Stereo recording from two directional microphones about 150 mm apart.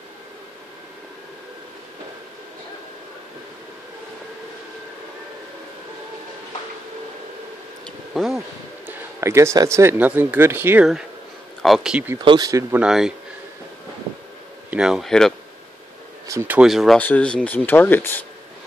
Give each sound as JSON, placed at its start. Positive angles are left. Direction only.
{"t": 7.8, "sound": "vehicle", "side_deg": 0}
{"t": 8.8, "sound": "speech", "side_deg": -20}
{"t": 11.6, "sound": "speech", "side_deg": 0}
{"t": 12.2, "sound": "speech", "side_deg": -25}
{"t": 12.7, "sound": "speech", "side_deg": -5}
{"t": 14.7, "sound": "speech", "side_deg": -5}
{"t": 16.3, "sound": "speech", "side_deg": -15}